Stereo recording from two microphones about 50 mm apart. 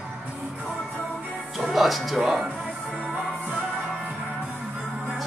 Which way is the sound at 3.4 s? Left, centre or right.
Right.